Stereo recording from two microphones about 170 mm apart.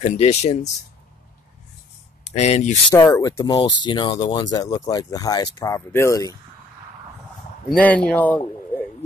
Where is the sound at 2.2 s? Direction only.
40° left (ahead or behind).